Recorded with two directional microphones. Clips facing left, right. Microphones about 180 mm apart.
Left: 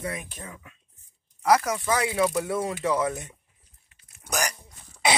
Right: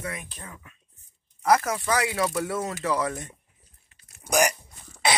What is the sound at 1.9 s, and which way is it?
Speech, 20° left (ahead or behind).